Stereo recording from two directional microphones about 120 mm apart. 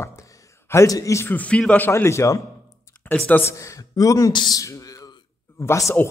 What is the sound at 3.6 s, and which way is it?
Speech, 25° left (ahead or behind).